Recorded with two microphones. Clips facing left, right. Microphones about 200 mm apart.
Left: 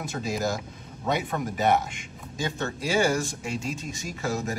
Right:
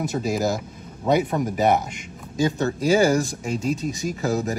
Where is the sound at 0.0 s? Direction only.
40° right (ahead or behind).